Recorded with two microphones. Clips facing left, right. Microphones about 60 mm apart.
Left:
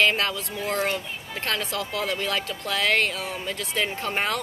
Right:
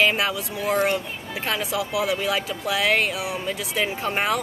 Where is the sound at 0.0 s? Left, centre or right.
Centre.